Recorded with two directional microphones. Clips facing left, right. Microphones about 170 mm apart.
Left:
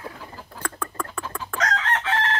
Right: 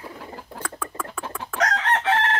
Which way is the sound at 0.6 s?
5° right (ahead or behind).